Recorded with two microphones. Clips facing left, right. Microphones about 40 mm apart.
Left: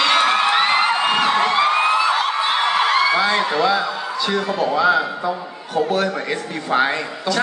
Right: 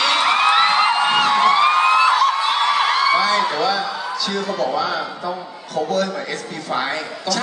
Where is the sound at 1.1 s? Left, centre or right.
Left.